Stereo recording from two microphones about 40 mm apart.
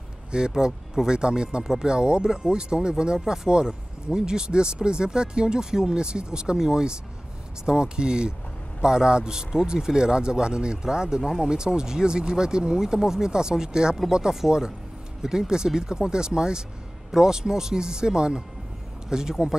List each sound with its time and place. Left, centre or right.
0.6 s speech: centre